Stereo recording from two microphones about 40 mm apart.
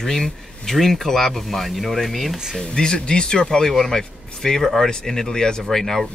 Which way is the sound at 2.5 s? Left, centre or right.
Centre.